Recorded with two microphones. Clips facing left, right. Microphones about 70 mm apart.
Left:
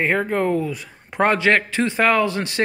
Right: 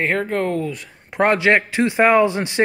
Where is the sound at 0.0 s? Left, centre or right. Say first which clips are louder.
Left 1 dB; centre.